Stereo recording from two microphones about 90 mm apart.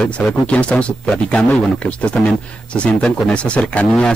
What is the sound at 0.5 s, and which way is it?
Speech, 15° left (ahead or behind).